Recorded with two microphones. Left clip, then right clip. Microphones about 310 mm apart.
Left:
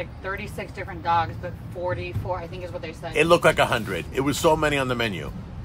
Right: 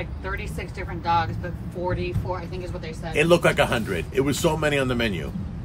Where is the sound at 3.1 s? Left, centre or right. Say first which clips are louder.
Left 1 dB; centre.